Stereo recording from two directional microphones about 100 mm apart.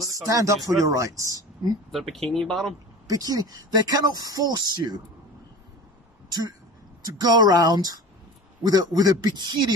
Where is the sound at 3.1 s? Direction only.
40° right (ahead or behind).